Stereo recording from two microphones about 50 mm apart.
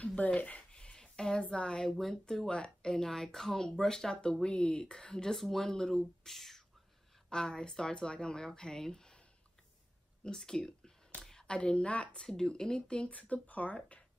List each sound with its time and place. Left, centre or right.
0.0 s a sound: left
1.5 s speech: centre
5.3 s speech: centre
10.2 s a woman's voice: centre
12.3 s speech: centre
13.1 s a woman's voice: left